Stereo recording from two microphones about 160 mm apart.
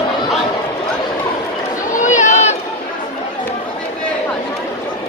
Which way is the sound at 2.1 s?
50° left (ahead or behind).